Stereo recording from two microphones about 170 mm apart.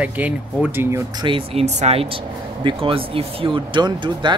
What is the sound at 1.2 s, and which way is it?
Speech, 35° right (ahead or behind).